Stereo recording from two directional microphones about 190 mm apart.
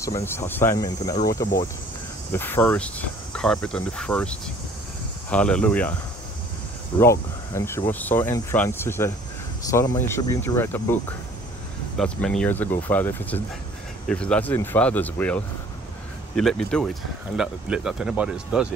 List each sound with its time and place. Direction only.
0.0 s speech: 15° left (ahead or behind)
7.0 s speech: 15° left (ahead or behind); by 18.7 s 5° right (ahead or behind)